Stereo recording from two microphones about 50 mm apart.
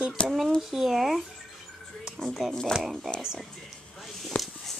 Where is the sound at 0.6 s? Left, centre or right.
Centre.